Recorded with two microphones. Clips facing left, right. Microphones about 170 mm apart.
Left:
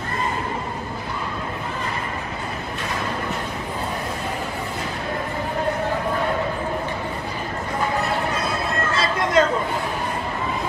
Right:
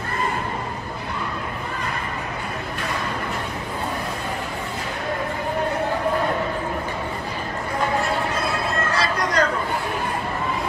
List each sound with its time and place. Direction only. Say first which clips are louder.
8.9 s chatter: left 5 dB; 25° left (ahead or behind)